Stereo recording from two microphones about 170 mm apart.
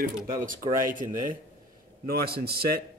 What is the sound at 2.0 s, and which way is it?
Speech, 65° right (ahead or behind).